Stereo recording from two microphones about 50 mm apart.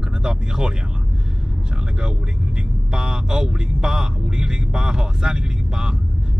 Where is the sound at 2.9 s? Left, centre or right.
Centre.